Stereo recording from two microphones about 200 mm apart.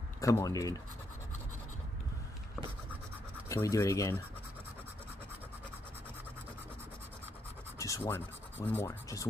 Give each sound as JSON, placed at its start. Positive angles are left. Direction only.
{"t": 0.2, "sound": "speech", "side_deg": 15}
{"t": 3.4, "sound": "speech", "side_deg": 15}
{"t": 7.8, "sound": "speech", "side_deg": 15}